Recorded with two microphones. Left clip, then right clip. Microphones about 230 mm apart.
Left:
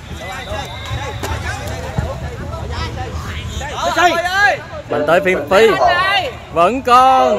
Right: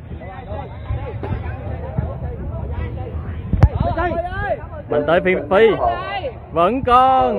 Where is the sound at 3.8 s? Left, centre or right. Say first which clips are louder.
Left 10 dB; left.